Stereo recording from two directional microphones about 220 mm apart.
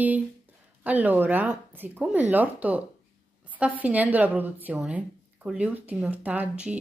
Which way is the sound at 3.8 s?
5° right (ahead or behind).